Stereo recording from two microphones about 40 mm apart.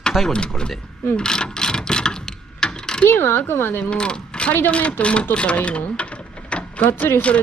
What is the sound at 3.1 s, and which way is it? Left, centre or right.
Speech, left.